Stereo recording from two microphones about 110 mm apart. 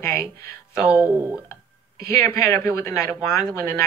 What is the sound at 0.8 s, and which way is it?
Speech, 20° right (ahead or behind).